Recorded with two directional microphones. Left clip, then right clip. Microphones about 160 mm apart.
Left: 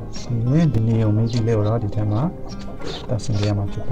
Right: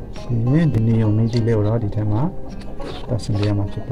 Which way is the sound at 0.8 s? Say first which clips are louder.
Right 1 dB; 65° right (ahead or behind).